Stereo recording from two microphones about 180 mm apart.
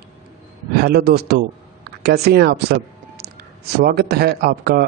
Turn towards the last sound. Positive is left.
turn(degrees=-65)  # may be behind; listen again after turning